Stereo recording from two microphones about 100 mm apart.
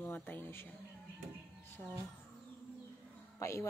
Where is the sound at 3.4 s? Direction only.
30° left (ahead or behind).